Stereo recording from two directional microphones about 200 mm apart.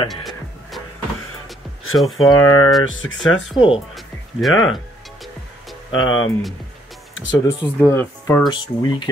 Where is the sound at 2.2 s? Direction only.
15° left (ahead or behind).